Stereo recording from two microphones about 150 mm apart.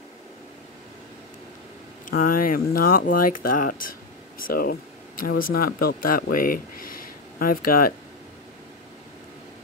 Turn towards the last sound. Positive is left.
turn(degrees=75)  # may be behind; listen again after turning